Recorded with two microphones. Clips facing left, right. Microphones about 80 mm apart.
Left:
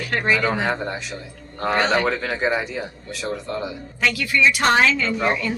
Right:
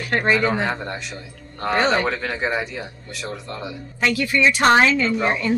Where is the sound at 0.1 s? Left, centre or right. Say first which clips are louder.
Right 3 dB; right.